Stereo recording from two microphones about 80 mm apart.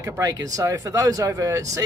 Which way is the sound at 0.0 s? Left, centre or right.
Right.